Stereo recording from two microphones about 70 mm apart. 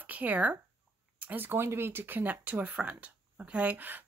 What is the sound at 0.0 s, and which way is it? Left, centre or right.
Speech, right.